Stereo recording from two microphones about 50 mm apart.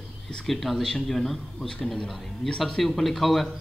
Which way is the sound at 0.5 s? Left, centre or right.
Centre.